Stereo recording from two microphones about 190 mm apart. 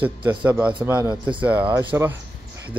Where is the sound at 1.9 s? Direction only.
15° right (ahead or behind).